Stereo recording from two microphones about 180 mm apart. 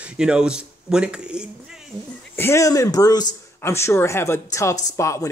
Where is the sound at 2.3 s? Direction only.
15° left (ahead or behind).